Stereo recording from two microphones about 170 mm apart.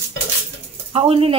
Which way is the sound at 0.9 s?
35° right (ahead or behind).